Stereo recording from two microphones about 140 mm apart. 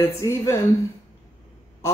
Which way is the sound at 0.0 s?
20° left (ahead or behind).